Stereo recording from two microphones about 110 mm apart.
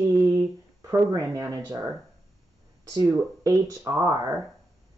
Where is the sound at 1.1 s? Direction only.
30° right (ahead or behind).